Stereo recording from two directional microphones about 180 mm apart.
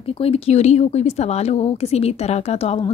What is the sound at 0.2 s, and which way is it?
Speech, 35° left (ahead or behind).